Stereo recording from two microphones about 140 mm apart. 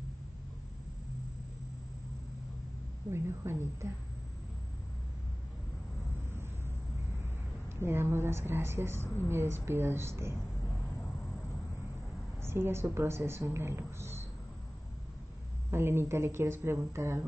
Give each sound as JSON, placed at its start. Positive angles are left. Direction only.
{"t": 3.1, "sound": "a woman's voice", "side_deg": -20}
{"t": 7.7, "sound": "a woman's voice", "side_deg": -15}
{"t": 12.4, "sound": "a woman's voice", "side_deg": -15}
{"t": 15.7, "sound": "a woman's voice", "side_deg": -15}